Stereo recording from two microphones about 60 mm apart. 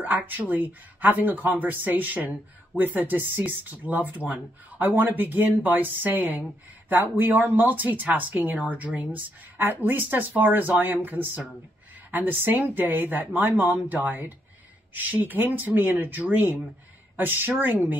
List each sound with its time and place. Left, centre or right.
0.0 s speech: right